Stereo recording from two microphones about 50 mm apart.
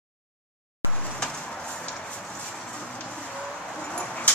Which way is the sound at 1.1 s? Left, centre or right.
Centre.